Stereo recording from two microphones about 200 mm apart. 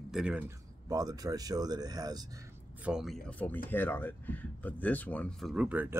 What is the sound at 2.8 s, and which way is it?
Speech, centre (ahead or behind).